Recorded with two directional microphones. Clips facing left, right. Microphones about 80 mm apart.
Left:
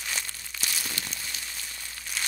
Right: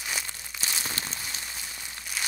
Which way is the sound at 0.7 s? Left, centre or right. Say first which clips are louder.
Right 2 dB; right.